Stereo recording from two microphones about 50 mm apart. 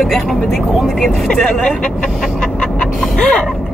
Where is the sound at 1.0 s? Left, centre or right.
Centre.